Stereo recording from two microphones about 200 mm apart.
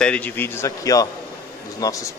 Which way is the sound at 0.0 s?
5° left (ahead or behind).